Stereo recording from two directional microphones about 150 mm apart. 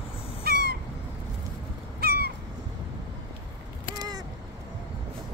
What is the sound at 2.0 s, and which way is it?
Crow, 90° right.